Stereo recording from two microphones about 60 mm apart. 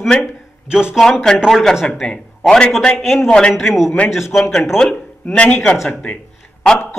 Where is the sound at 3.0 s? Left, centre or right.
Centre.